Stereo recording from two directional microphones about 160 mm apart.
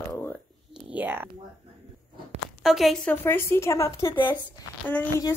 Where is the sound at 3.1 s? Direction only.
15° left (ahead or behind).